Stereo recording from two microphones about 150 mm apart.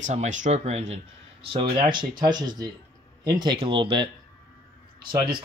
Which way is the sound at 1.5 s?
30° right (ahead or behind).